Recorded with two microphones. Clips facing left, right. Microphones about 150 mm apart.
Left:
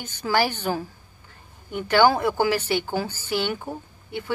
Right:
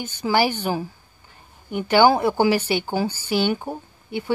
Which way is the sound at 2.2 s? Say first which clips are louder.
Right 3 dB; 25° right (ahead or behind).